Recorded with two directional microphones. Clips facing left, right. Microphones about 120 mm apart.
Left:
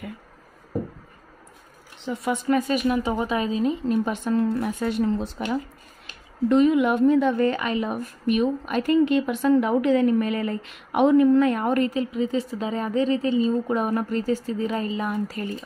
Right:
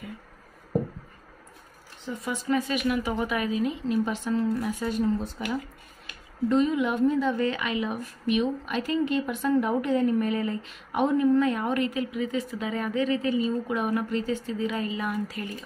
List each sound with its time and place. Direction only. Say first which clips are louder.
2.0 s speech: left 5 dB; 65° left (ahead or behind)
2.8 s speech: left 3 dB; 30° left (ahead or behind)
3.9 s speech: left 3 dB; 55° left (ahead or behind); by 5.3 s 70° left (ahead or behind)
6.5 s a woman's voice: left 5 dB; 65° left (ahead or behind); by 8.9 s 45° left (ahead or behind)
9.0 s speech: left 5 dB; 80° left; by 11.9 s 50° left (ahead or behind)
11.9 s a woman's voice: left 4 dB; 30° left (ahead or behind)